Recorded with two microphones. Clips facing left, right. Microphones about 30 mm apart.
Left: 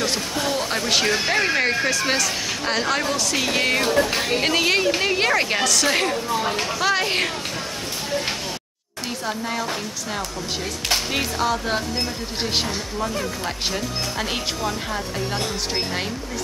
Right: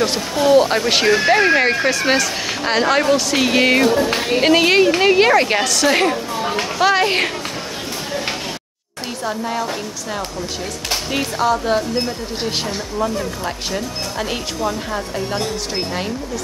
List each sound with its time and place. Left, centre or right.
0.0 s speech: centre
9.2 s speech: centre
11.1 s speech: centre
13.7 s speech: centre